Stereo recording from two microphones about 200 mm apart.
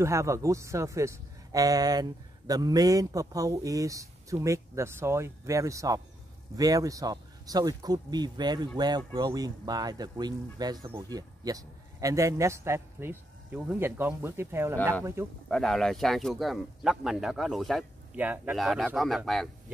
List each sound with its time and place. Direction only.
0.0 s speech: 15° right (ahead or behind)
15.4 s speech: centre (ahead or behind)